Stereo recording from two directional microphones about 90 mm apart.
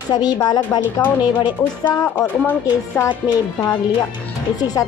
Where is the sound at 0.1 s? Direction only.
50° left (ahead or behind).